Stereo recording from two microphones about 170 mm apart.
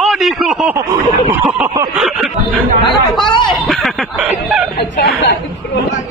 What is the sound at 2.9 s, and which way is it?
Chatter, 25° left (ahead or behind).